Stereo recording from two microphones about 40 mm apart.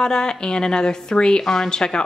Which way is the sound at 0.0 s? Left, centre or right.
Centre.